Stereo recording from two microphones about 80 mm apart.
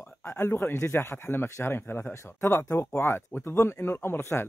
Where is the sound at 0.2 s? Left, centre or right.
Left.